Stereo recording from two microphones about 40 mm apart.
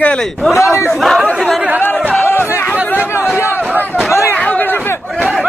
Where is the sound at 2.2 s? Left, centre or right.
Left.